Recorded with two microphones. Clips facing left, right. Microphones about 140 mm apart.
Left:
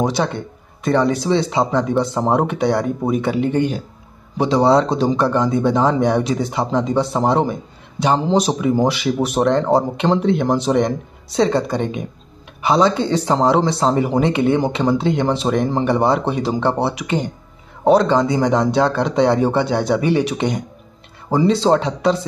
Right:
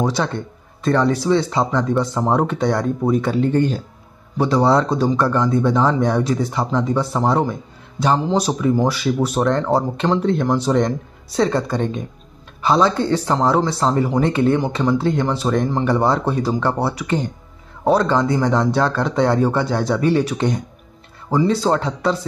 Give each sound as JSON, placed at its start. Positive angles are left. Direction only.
{"t": 0.2, "sound": "speech", "side_deg": 15}